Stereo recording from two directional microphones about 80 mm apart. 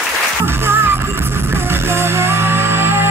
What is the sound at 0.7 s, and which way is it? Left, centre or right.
Music, right.